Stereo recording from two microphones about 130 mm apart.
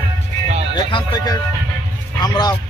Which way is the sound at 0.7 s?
35° left (ahead or behind).